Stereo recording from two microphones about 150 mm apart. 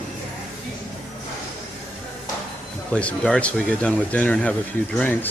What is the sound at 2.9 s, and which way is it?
Speech, 5° left (ahead or behind).